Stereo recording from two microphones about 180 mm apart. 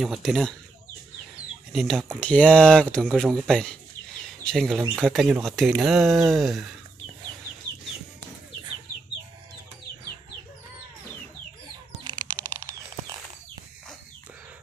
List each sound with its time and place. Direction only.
0.0 s speech: centre (ahead or behind)
1.7 s speech: centre (ahead or behind)
12.0 s a sound: 20° right (ahead or behind)